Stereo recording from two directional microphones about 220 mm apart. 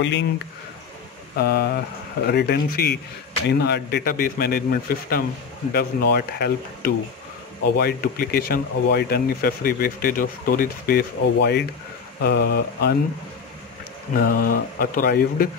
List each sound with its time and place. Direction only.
1.3 s speech: 45° left (ahead or behind)
14.1 s speech: 40° left (ahead or behind)